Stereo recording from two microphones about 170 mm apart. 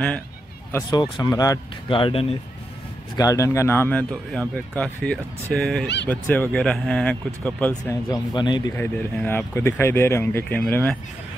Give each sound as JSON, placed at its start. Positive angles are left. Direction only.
{"t": 0.7, "sound": "speech", "side_deg": 15}
{"t": 0.9, "sound": "speech", "side_deg": 25}
{"t": 3.2, "sound": "speech", "side_deg": 20}
{"t": 7.9, "sound": "speech", "side_deg": 25}
{"t": 8.7, "sound": "speech", "side_deg": 10}